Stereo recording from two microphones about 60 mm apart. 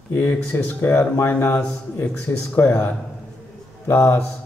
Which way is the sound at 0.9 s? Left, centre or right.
Left.